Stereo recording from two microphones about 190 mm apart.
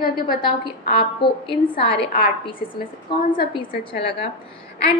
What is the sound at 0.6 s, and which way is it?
A woman's voice, 25° left (ahead or behind).